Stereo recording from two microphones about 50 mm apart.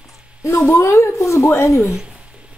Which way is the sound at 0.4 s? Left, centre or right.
Left.